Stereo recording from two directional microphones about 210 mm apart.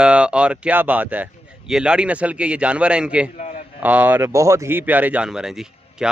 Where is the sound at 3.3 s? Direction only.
35° left (ahead or behind).